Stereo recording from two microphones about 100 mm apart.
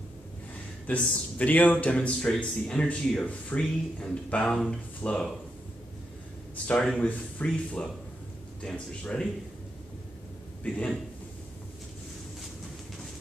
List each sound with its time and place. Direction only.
0.8 s speech: 15° left (ahead or behind)
6.5 s a sound: 15° left (ahead or behind)
7.0 s speech: 15° left (ahead or behind)
10.6 s a man's voice: 10° left (ahead or behind)